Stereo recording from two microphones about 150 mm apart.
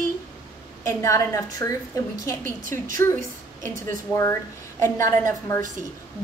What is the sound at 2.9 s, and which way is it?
A woman's voice, 65° right (ahead or behind).